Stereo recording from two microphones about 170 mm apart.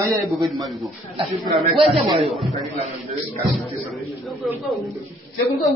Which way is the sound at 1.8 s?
35° right (ahead or behind).